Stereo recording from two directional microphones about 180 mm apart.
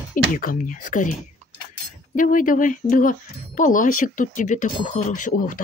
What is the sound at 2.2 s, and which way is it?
Speech, 50° left (ahead or behind).